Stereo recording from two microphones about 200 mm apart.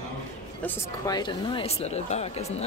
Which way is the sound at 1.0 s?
20° left (ahead or behind).